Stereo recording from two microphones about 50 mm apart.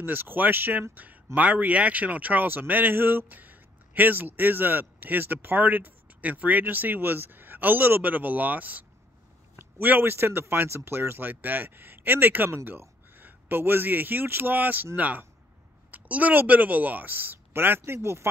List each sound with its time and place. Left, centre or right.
0.0 s speech: right
0.9 s a man's voice: right